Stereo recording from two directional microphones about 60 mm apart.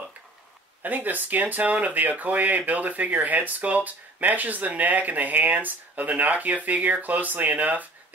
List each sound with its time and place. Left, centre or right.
0.8 s speech: right